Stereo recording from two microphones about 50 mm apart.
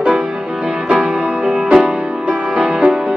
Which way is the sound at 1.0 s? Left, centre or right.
Centre.